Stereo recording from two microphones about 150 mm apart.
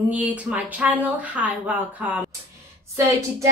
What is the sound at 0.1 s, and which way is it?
Speech, 10° right (ahead or behind).